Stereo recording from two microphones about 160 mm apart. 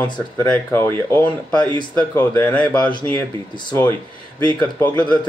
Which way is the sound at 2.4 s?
10° left (ahead or behind).